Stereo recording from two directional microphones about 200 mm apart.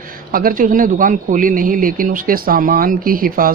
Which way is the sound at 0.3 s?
45° right (ahead or behind).